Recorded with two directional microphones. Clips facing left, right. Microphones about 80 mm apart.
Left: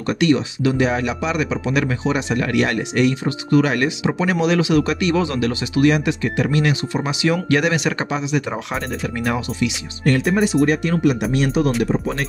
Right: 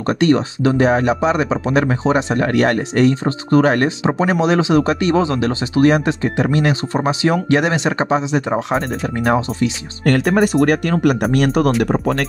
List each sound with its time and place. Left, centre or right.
0.2 s speech: right
10.0 s speech: right